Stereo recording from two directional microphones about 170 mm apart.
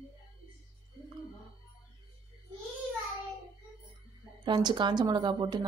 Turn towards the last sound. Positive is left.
turn(degrees=-25)  # may be behind; listen again after turning